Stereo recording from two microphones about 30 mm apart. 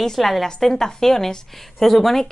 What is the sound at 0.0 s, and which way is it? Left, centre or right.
Speech, centre.